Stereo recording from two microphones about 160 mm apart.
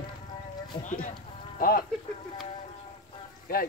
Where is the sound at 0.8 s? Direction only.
55° left (ahead or behind).